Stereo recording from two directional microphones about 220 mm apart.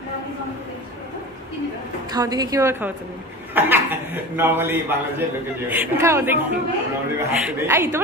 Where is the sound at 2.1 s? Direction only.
15° right (ahead or behind).